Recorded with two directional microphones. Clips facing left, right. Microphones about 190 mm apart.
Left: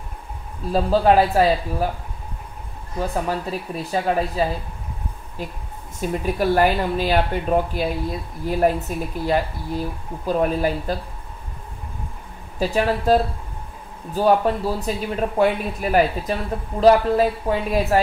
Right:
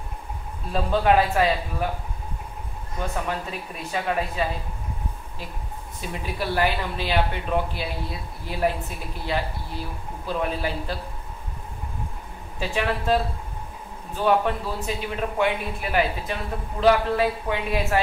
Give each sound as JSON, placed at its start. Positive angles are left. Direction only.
{"t": 0.7, "sound": "a man's voice", "side_deg": 35}
{"t": 3.0, "sound": "a man's voice", "side_deg": 35}
{"t": 5.9, "sound": "speech", "side_deg": 45}
{"t": 12.5, "sound": "a man's voice", "side_deg": 40}